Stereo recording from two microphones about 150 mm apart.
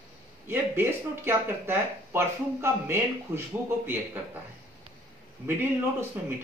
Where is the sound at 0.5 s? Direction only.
15° right (ahead or behind).